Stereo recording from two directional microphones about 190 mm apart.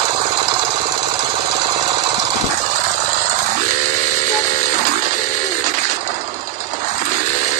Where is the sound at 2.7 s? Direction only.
40° right (ahead or behind).